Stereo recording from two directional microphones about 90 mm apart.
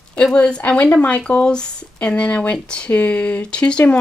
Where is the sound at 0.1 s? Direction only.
10° left (ahead or behind).